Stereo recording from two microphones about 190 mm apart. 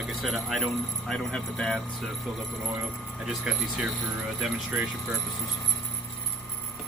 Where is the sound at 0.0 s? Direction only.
Centre (ahead or behind).